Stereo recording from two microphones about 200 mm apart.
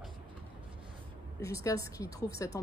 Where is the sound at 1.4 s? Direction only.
15° left (ahead or behind).